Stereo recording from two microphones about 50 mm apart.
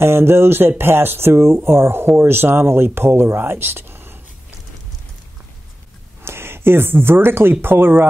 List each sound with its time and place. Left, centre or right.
0.0 s speech: right
6.2 s speech: right